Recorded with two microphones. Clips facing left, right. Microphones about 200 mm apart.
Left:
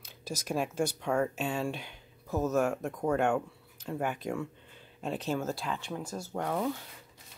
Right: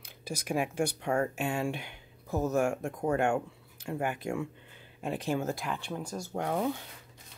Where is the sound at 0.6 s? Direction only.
60° right (ahead or behind).